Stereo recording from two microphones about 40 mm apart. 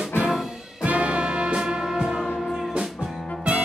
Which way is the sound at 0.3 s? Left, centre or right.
Centre.